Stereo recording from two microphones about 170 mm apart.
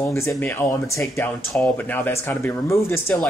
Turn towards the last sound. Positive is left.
turn(degrees=15)  # may be behind; listen again after turning